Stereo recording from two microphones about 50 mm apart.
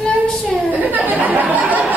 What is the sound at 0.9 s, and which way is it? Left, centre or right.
Chatter, right.